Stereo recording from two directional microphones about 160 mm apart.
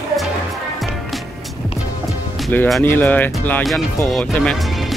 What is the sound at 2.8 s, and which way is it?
Speech, 10° left (ahead or behind).